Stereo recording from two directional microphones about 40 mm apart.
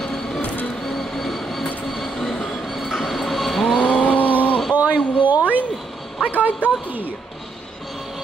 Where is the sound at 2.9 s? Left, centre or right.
Centre.